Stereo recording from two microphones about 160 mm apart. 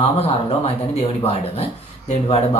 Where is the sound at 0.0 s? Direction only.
35° left (ahead or behind).